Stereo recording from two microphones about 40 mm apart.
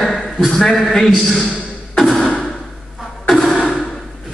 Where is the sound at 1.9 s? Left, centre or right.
Centre.